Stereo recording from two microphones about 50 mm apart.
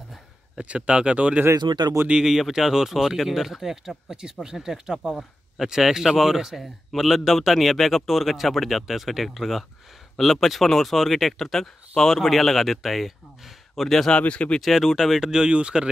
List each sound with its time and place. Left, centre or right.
0.6 s speech: right
2.0 s speech: centre
14.1 s speech: left
14.6 s speech: centre
15.1 s speech: centre